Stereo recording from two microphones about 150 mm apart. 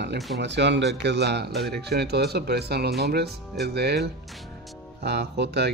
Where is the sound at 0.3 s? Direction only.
90° right.